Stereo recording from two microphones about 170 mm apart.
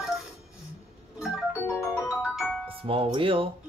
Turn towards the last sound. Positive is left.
turn(degrees=-30)  # may be behind; listen again after turning